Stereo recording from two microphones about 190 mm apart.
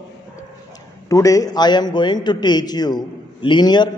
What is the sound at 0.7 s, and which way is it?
A man's voice, 15° left (ahead or behind).